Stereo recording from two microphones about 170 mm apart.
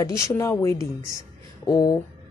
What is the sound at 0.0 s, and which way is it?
Speech, 15° left (ahead or behind).